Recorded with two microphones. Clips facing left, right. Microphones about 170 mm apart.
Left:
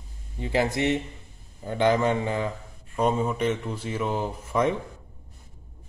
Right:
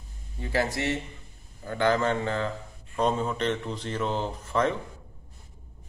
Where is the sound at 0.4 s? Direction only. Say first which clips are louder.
Left 3 dB; 20° left (ahead or behind).